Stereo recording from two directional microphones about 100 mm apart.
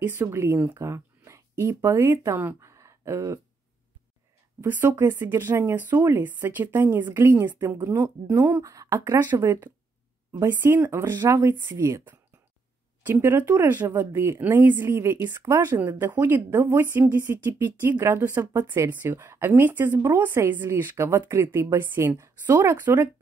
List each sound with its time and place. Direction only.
0.0 s speech: 25° right (ahead or behind)
2.7 s a sound: 30° right (ahead or behind)
4.6 s speech: 20° right (ahead or behind)
8.6 s speech: 35° right (ahead or behind)
13.0 s speech: 25° right (ahead or behind)